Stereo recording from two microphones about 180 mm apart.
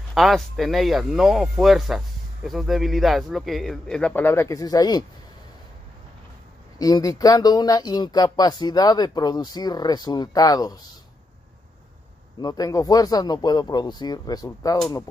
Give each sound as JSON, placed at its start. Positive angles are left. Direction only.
{"t": 0.1, "sound": "speech", "side_deg": 0}
{"t": 6.8, "sound": "speech", "side_deg": 20}
{"t": 12.4, "sound": "speech", "side_deg": 20}